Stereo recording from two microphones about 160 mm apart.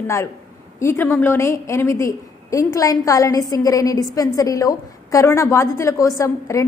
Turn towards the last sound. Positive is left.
turn(degrees=20)  # may be behind; listen again after turning